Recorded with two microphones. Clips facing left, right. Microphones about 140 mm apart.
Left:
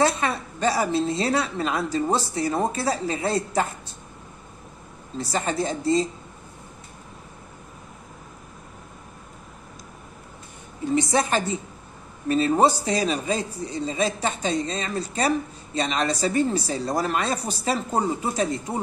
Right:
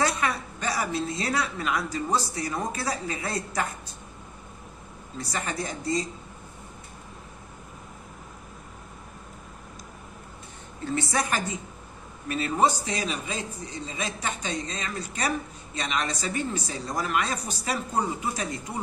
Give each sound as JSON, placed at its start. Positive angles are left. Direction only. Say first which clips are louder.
{"t": 0.0, "sound": "a woman's voice", "louder": "left 4 dB", "side_deg": 30}
{"t": 5.1, "sound": "a woman's voice", "louder": "left 6 dB", "side_deg": 30}
{"t": 10.9, "sound": "a woman's voice", "louder": "left 6 dB", "side_deg": 20}